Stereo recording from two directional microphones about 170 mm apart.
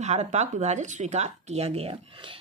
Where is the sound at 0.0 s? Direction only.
40° right (ahead or behind).